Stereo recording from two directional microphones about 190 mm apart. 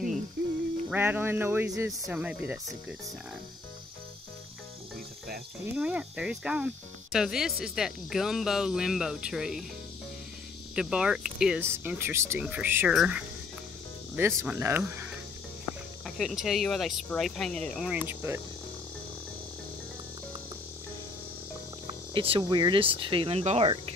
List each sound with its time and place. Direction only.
0.8 s speech: 10° right (ahead or behind)
5.8 s speech: 5° right (ahead or behind)
10.7 s speech: 5° right (ahead or behind)
16.2 s speech: centre (ahead or behind)
22.1 s speech: 30° right (ahead or behind)